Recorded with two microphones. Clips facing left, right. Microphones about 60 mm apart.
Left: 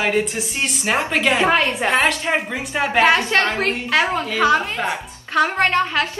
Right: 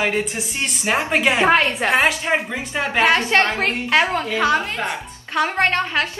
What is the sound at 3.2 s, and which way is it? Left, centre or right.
Speech, right.